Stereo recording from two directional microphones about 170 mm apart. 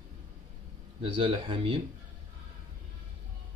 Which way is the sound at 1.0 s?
30° right (ahead or behind).